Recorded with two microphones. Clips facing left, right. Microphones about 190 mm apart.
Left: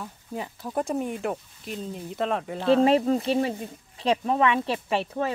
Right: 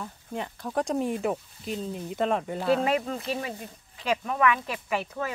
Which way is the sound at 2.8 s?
30° left (ahead or behind).